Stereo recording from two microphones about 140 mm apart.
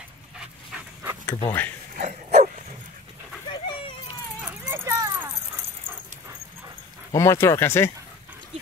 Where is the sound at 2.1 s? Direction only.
55° right (ahead or behind).